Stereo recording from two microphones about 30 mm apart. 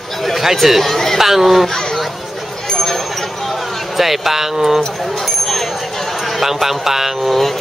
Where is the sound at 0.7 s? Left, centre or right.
Centre.